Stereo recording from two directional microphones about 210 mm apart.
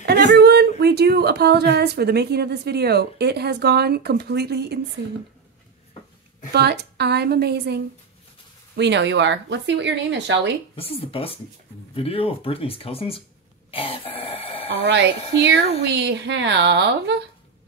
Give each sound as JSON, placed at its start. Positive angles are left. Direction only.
{"t": 0.0, "sound": "speech", "side_deg": -55}
{"t": 6.5, "sound": "speech", "side_deg": -50}
{"t": 10.8, "sound": "speech", "side_deg": 25}
{"t": 13.7, "sound": "cough", "side_deg": 25}
{"t": 14.9, "sound": "speech", "side_deg": -55}